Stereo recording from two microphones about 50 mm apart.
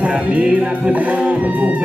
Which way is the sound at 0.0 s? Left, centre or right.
Right.